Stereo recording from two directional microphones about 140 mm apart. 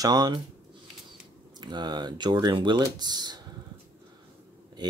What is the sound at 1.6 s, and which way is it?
Speech, 30° right (ahead or behind).